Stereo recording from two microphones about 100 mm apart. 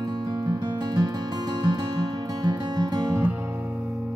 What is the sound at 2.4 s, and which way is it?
Music, 45° right (ahead or behind).